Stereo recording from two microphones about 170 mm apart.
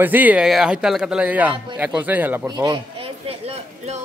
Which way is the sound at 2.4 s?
25° right (ahead or behind).